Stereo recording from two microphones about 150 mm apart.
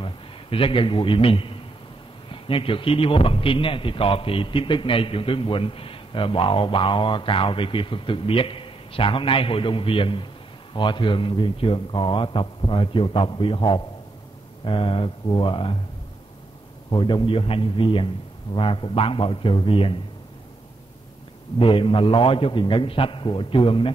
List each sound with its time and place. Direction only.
0.0 s a man's voice: 35° left (ahead or behind)
16.9 s a man's voice: 35° left (ahead or behind)
21.5 s a man's voice: 35° left (ahead or behind)